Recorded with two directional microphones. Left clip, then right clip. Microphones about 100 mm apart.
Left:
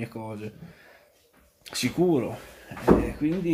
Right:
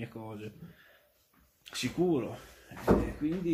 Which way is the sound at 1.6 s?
25° left (ahead or behind).